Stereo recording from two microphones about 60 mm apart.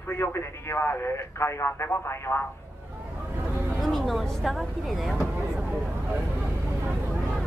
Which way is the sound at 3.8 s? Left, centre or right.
Centre.